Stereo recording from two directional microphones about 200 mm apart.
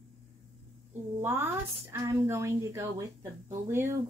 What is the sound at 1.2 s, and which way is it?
A woman's voice, 10° right (ahead or behind).